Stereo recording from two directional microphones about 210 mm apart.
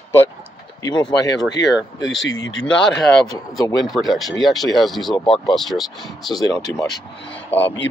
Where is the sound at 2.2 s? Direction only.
65° left (ahead or behind).